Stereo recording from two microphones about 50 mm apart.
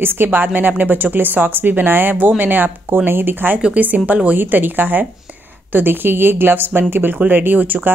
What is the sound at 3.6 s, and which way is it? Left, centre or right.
A woman's voice, right.